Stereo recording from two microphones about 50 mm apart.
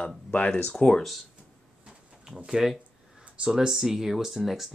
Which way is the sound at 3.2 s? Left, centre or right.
Centre.